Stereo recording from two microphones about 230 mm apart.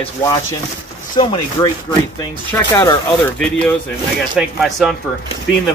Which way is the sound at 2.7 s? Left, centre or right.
Centre.